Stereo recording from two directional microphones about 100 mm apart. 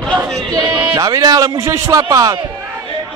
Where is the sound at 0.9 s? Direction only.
40° right (ahead or behind).